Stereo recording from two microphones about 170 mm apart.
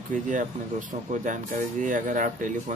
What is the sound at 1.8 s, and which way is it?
Speech, 50° right (ahead or behind).